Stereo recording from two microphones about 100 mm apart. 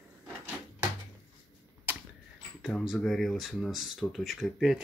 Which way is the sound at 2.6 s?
Centre (ahead or behind).